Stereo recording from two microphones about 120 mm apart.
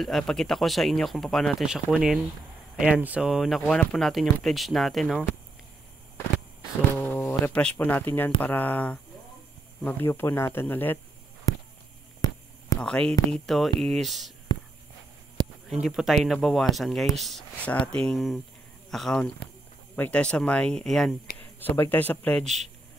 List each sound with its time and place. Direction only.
0.0 s speech: 5° left (ahead or behind)
7.0 s a sound: 20° left (ahead or behind)
7.5 s speech: 10° left (ahead or behind)
12.8 s speech: 10° left (ahead or behind)
15.7 s speech: 5° right (ahead or behind)
21.4 s speech: 15° left (ahead or behind)